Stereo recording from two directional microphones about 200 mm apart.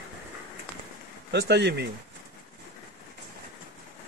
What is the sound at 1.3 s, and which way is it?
Speech, 55° right (ahead or behind).